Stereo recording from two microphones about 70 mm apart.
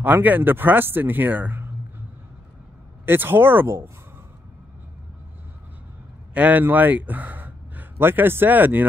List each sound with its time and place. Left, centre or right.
0.0 s speech: right
3.1 s speech: right
6.3 s speech: right